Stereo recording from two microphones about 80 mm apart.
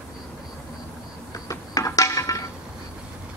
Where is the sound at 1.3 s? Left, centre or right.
Left.